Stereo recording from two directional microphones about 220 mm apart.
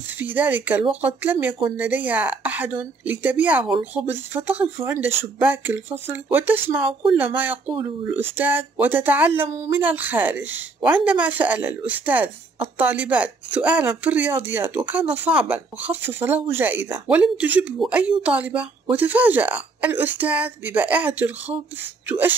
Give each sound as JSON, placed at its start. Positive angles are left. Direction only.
{"t": 0.2, "sound": "speech", "side_deg": -10}
{"t": 7.7, "sound": "speech", "side_deg": -20}
{"t": 8.1, "sound": "speech", "side_deg": -10}